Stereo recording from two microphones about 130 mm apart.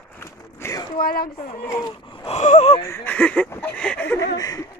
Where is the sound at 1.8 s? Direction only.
40° left (ahead or behind).